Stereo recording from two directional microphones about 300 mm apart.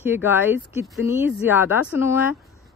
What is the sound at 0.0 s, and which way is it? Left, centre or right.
Speech, centre.